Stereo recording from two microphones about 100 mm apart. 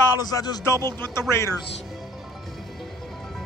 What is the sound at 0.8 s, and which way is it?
Speech, 25° left (ahead or behind).